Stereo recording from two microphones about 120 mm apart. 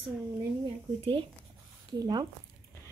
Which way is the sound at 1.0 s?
45° right (ahead or behind).